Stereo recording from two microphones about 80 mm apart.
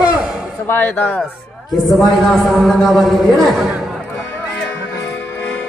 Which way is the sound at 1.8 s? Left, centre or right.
Centre.